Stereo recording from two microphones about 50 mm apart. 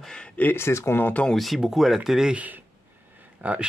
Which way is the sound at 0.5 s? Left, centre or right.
Left.